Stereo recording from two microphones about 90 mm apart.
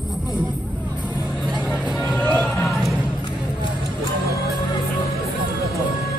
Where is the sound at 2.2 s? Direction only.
20° left (ahead or behind).